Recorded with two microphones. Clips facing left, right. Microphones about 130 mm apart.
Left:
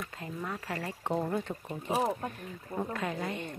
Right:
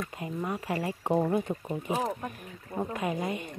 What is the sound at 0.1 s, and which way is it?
A woman's voice, 15° right (ahead or behind).